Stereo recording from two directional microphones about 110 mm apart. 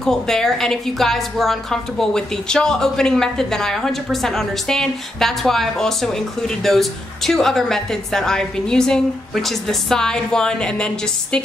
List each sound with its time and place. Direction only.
0.0 s a woman's voice: 5° left (ahead or behind)